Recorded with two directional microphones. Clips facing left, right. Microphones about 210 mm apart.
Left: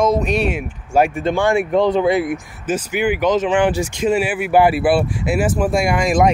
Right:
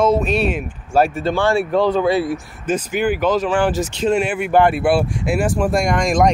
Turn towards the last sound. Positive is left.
turn(degrees=5)  # may be behind; listen again after turning